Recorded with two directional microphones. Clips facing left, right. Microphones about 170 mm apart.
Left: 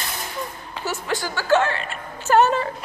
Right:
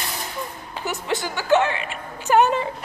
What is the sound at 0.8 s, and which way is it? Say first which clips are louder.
Speech: even; 20° right (ahead or behind).